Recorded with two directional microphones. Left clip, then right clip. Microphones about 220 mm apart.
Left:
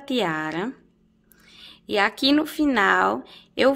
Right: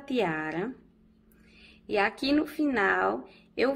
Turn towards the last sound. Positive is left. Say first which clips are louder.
# left 8 dB
turn(degrees=30)  # may be behind; listen again after turning